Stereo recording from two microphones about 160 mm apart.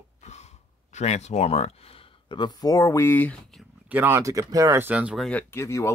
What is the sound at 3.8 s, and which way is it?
Speech, 10° right (ahead or behind).